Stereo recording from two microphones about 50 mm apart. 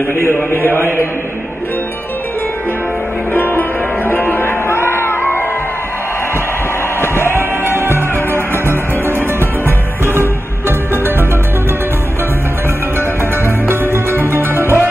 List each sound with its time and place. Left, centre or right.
0.1 s a man's voice: left
3.3 s music: left
7.0 s music: left
7.3 s music: right
13.7 s music: right